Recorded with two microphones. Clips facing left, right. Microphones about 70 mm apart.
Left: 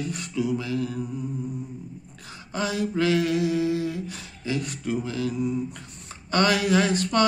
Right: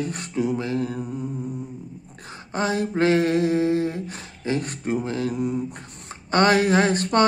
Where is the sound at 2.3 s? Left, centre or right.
Right.